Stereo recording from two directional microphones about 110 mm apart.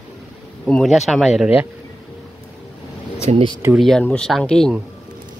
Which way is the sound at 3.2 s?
60° right (ahead or behind).